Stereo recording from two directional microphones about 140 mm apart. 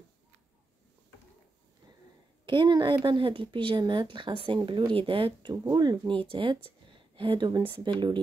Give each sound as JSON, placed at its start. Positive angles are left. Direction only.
{"t": 2.4, "sound": "speech", "side_deg": -35}